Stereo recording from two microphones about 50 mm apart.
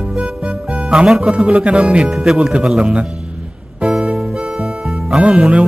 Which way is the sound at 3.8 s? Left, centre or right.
Centre.